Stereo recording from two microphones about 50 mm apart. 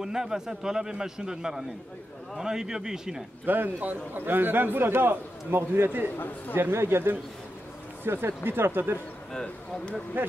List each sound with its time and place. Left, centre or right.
0.0 s a man's voice: centre
3.4 s a man's voice: right
6.1 s speech: left
6.7 s a man's voice: right
10.2 s speech: right